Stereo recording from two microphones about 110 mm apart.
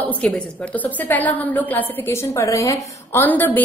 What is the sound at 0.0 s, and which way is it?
A woman's voice, 15° left (ahead or behind).